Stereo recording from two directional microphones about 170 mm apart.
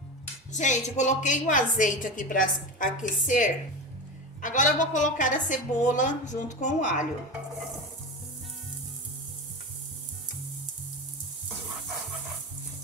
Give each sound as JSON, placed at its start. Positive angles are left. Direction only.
{"t": 0.5, "sound": "a woman's voice", "side_deg": 45}